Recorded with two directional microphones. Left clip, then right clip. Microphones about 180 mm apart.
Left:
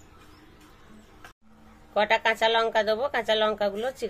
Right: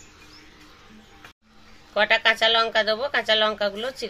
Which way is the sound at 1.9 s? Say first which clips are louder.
Right 3 dB; 15° left (ahead or behind).